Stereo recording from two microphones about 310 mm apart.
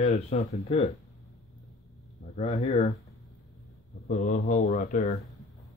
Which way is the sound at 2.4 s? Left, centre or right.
Centre.